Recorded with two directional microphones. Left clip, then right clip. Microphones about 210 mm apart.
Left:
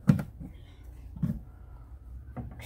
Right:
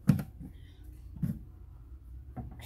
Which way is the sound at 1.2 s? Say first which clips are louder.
Left 3 dB; 45° right (ahead or behind).